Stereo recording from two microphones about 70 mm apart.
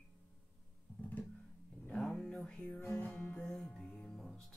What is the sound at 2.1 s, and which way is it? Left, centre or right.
Music, centre.